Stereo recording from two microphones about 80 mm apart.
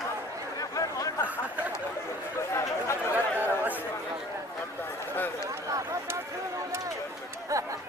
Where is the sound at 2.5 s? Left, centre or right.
Left.